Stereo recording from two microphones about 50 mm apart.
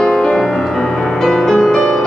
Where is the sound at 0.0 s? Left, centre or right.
Centre.